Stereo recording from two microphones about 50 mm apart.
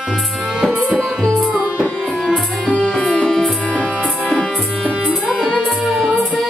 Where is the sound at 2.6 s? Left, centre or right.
Centre.